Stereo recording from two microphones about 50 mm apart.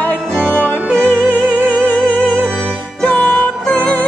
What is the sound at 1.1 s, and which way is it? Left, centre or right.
Music, left.